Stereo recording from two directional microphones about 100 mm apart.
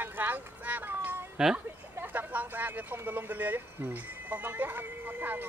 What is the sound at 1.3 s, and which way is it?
Speech, 5° right (ahead or behind).